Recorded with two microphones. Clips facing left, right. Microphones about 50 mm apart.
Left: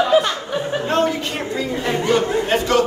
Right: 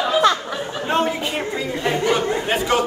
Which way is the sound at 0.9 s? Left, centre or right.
Centre.